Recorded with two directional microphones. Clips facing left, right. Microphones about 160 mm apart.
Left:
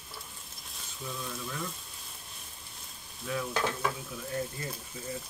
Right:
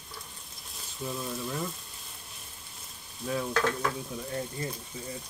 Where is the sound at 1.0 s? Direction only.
35° right (ahead or behind).